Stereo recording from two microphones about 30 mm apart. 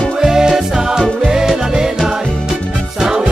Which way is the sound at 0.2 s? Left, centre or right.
Centre.